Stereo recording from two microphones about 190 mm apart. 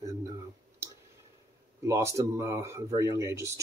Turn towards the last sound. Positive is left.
turn(degrees=-15)  # may be behind; listen again after turning